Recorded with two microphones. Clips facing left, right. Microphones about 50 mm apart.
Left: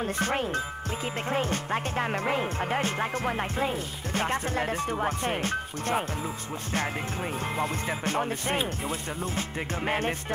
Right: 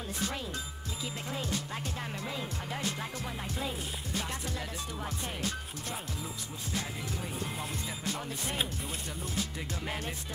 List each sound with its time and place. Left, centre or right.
0.0 s speech: left
7.8 s speech: left
9.2 s music: left